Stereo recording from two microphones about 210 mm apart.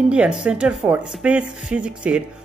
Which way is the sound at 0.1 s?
5° right (ahead or behind).